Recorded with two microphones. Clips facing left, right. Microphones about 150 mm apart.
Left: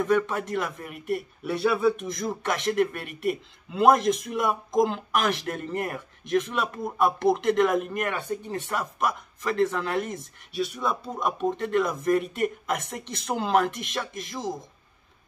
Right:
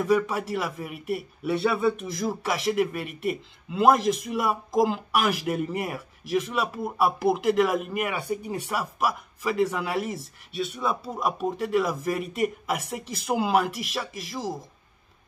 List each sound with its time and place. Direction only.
0.0 s a man's voice: 5° right (ahead or behind)